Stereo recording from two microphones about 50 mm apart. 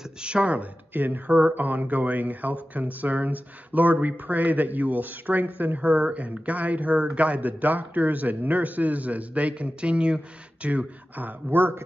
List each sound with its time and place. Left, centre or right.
0.2 s a man's voice: right
0.9 s a man's voice: right